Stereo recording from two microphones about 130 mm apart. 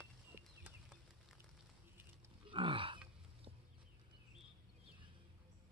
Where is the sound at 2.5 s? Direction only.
40° right (ahead or behind).